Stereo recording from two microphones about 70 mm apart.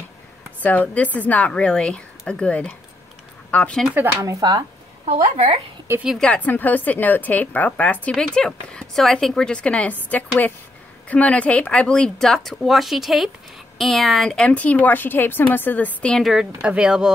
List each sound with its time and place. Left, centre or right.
0.6 s a woman's voice: left
4.0 s speech: right
4.4 s speech: right
6.1 s speech: centre
6.4 s a woman's voice: left
8.1 s speech: centre
12.3 s speech: centre
14.3 s a woman's voice: centre
16.2 s speech: centre